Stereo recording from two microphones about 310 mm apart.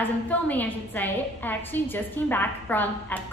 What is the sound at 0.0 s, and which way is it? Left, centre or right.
A woman's voice, centre.